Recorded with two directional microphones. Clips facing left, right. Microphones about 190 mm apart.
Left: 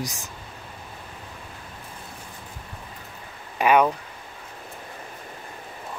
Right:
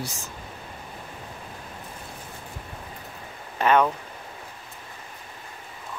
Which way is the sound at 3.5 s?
10° left (ahead or behind).